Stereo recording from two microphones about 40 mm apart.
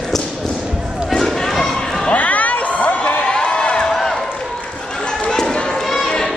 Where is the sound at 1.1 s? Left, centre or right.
Centre.